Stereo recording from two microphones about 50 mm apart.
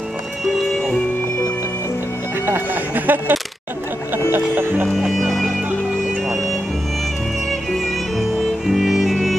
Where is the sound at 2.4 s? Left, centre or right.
Right.